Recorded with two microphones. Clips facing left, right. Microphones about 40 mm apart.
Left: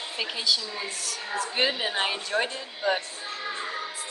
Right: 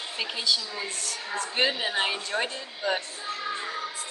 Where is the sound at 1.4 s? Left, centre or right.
Centre.